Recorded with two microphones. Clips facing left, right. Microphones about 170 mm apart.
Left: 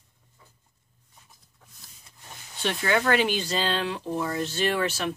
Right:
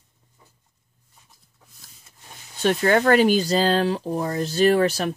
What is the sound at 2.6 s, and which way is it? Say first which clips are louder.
Speech: right 7 dB; 45° right (ahead or behind).